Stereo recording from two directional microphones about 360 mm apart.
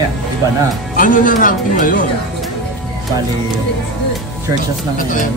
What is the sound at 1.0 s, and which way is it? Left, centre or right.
Speech, left.